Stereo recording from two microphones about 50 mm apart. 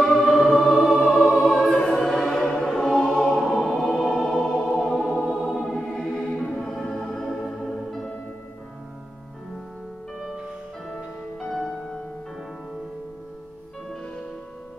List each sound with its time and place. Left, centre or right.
0.1 s music: centre
2.4 s choir: centre
3.3 s music: centre
6.3 s organ: centre
11.3 s music: centre